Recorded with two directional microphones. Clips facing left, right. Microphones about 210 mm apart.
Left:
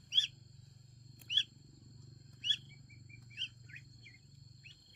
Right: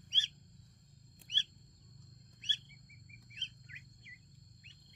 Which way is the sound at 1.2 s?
15° right (ahead or behind).